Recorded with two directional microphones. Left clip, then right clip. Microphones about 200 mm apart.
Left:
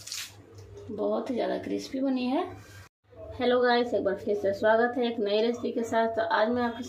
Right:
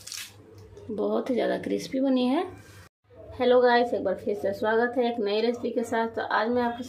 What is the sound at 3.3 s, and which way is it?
A woman's voice, 15° right (ahead or behind).